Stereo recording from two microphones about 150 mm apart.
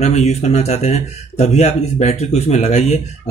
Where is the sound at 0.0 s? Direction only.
50° left (ahead or behind).